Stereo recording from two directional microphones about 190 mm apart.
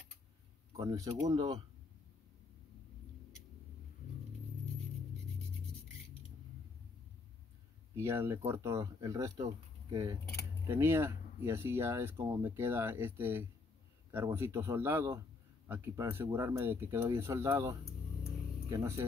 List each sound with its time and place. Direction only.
0.7 s speech: 20° right (ahead or behind)
7.9 s speech: 15° right (ahead or behind)